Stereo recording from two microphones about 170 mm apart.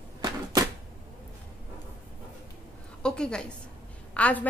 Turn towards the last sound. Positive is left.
turn(degrees=10)  # may be behind; listen again after turning